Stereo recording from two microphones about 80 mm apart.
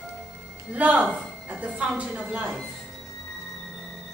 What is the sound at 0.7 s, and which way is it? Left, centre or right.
A woman's voice, centre.